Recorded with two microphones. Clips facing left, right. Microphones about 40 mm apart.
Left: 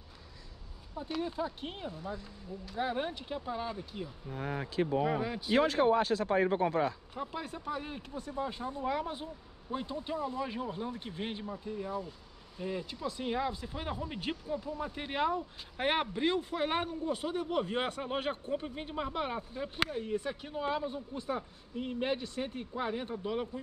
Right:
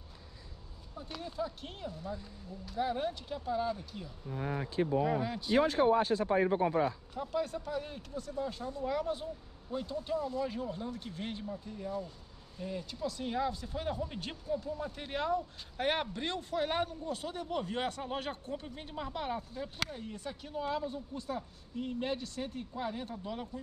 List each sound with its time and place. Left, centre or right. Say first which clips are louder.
0.9 s speech: left 4 dB; centre
5.9 s speech: even; left
7.2 s speech: right 4 dB; centre